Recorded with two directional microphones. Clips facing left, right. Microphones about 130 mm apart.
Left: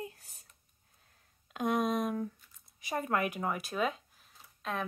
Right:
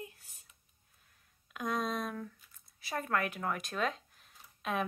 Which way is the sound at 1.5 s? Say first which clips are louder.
Left 5 dB; 25° left (ahead or behind).